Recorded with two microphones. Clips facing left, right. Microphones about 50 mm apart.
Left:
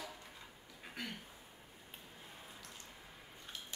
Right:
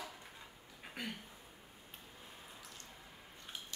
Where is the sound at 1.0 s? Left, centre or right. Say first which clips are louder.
Right 1 dB; centre.